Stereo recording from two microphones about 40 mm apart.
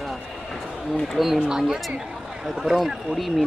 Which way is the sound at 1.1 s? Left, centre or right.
Centre.